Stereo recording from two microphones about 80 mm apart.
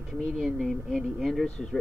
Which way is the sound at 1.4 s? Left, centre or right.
Centre.